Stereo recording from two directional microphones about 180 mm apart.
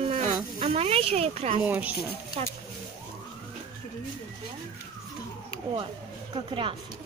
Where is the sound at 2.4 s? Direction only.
35° right (ahead or behind).